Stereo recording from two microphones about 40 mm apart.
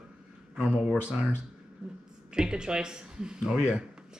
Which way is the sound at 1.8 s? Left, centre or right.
Centre.